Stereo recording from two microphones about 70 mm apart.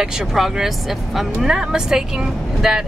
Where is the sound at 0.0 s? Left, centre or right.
Centre.